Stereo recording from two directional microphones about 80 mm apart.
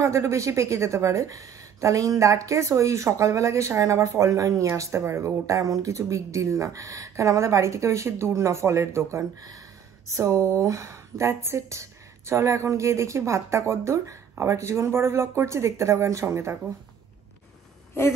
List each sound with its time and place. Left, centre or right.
0.0 s a woman's voice: right